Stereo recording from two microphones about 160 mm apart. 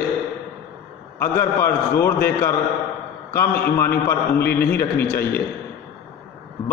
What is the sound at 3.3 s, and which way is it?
Speech, 15° left (ahead or behind).